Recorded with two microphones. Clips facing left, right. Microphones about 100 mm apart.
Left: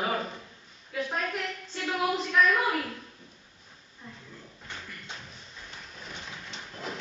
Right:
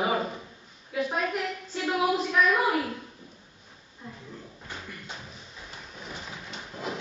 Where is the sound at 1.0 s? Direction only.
5° right (ahead or behind).